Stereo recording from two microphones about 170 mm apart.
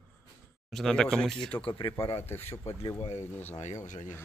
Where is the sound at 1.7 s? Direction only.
30° left (ahead or behind).